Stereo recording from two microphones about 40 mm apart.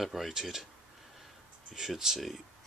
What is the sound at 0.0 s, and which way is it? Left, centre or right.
Speech, centre.